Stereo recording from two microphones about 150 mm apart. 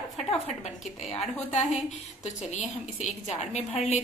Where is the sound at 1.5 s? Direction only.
50° left (ahead or behind).